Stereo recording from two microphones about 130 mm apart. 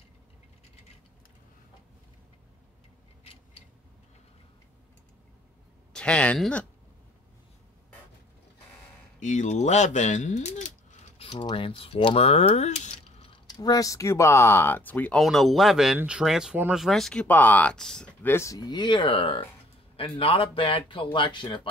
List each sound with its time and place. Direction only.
5.9 s speech: 10° left (ahead or behind)
9.2 s speech: 65° left (ahead or behind)
11.1 s mechanisms: 45° left (ahead or behind)
13.2 s mechanisms: 40° left (ahead or behind)
13.6 s speech: 30° left (ahead or behind); by 15.2 s 10° left (ahead or behind)
15.2 s speech: centre (ahead or behind)
16.8 s speech: centre (ahead or behind)
18.3 s speech: 25° left (ahead or behind)